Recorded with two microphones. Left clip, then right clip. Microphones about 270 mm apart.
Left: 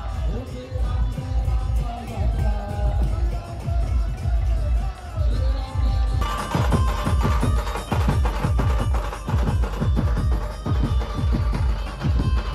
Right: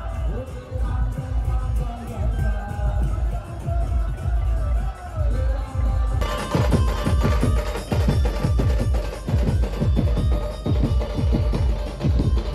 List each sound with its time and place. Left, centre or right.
6.1 s music: centre
9.3 s music: centre